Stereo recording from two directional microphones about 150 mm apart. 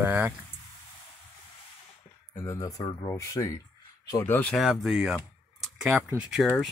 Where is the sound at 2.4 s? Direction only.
20° left (ahead or behind).